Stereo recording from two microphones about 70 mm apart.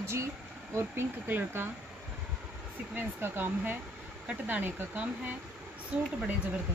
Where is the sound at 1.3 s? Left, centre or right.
Right.